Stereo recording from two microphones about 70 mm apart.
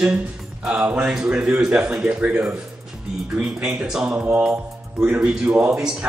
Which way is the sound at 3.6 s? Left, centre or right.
Centre.